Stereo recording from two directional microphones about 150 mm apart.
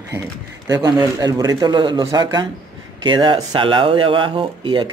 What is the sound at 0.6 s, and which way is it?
Speech, 25° right (ahead or behind).